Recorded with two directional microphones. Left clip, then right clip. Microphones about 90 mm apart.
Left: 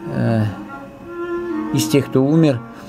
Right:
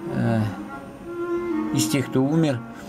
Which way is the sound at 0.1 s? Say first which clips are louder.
Left 5 dB; 45° left (ahead or behind).